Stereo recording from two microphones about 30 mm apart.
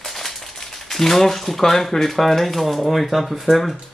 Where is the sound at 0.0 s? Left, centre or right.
Centre.